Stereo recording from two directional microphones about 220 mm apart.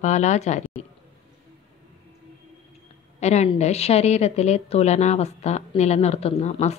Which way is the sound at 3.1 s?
30° left (ahead or behind).